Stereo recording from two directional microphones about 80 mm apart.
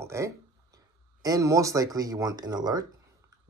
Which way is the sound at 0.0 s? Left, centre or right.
Right.